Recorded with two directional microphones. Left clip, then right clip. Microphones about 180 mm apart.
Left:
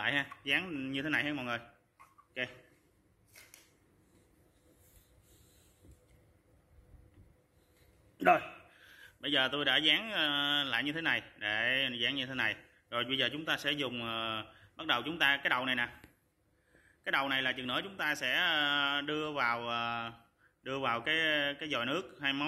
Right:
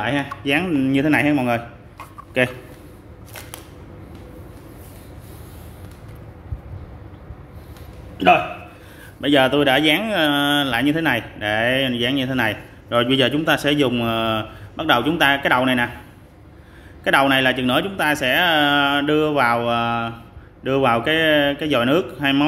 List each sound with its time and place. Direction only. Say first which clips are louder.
0.0 s speech: right 11 dB; 5° left (ahead or behind)
0.5 s speech: right 17 dB; 5° right (ahead or behind)
2.4 s a man's voice: right 19 dB; 30° right (ahead or behind)
9.2 s speech: right 15 dB; 5° right (ahead or behind)
17.0 s speech: right 16 dB; 5° right (ahead or behind)